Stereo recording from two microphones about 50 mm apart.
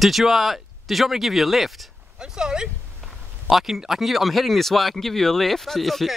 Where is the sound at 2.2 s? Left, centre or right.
Centre.